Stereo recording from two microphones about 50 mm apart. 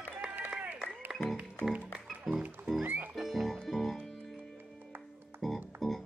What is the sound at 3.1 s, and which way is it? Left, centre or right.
Music, centre.